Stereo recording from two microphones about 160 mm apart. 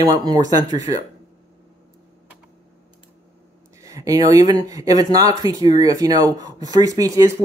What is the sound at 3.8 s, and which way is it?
Speech, 20° right (ahead or behind).